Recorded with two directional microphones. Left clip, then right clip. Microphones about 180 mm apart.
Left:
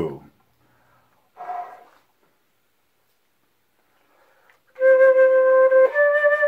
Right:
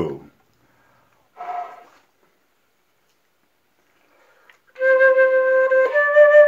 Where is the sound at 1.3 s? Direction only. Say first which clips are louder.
Right 2 dB; 35° right (ahead or behind).